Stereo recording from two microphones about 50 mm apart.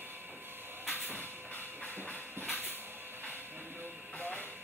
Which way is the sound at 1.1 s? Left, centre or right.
Left.